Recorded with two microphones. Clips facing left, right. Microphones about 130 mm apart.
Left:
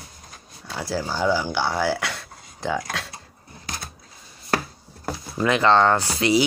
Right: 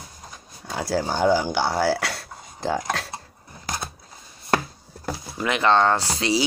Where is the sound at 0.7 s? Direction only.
50° right (ahead or behind).